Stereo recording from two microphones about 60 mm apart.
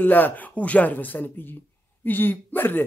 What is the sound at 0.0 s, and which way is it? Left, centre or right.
Speech, left.